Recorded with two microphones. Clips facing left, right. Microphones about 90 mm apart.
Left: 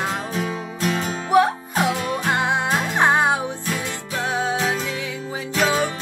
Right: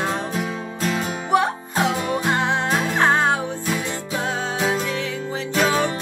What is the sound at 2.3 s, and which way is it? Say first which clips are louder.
Music: left 2 dB; 15° left (ahead or behind).